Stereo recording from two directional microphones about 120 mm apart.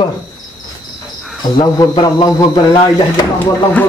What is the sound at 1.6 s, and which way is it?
A man's voice, 35° left (ahead or behind).